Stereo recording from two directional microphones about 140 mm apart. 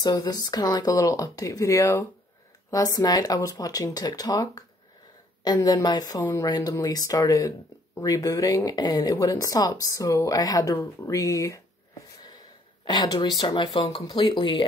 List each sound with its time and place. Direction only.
0.0 s speech: 30° left (ahead or behind)
12.8 s speech: 30° left (ahead or behind)